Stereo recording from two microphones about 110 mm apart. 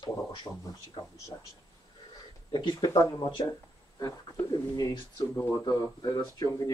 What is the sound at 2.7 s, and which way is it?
Speech, 30° left (ahead or behind).